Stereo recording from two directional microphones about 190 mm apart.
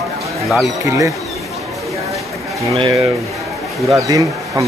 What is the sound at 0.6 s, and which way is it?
Speech, 15° right (ahead or behind).